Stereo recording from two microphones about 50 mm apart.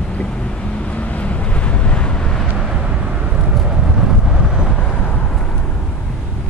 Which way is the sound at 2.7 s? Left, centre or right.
Centre.